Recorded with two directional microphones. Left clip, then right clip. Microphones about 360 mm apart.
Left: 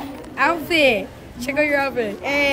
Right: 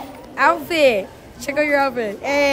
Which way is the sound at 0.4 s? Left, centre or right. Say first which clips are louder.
Right 2 dB; centre.